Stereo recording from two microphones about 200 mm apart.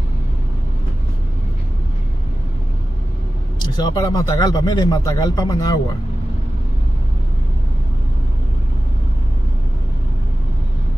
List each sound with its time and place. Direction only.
3.5 s speech: 20° left (ahead or behind)